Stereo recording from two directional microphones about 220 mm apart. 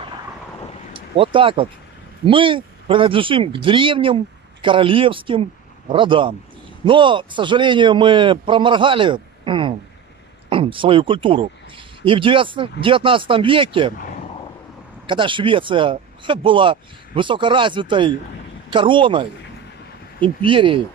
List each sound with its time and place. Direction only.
0.9 s speech: 25° right (ahead or behind)
15.0 s speech: 20° right (ahead or behind)